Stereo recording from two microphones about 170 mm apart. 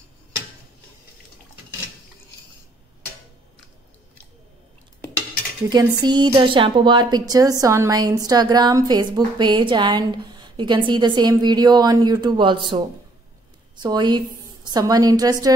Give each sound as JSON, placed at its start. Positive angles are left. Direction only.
{"t": 5.7, "sound": "a woman's voice", "side_deg": -25}